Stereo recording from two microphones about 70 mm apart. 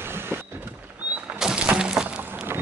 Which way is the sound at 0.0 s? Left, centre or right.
Right.